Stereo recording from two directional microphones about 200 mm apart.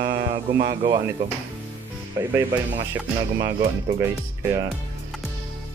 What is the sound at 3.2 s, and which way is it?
Speech, 20° right (ahead or behind).